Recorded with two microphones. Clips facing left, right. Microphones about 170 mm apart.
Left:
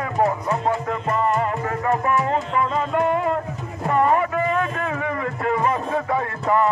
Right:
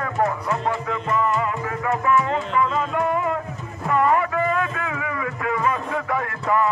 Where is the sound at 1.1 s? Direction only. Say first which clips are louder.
Left 1 dB; 45° left (ahead or behind).